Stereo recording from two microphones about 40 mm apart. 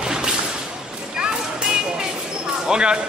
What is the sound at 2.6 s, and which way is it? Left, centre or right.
Basketball bounce, right.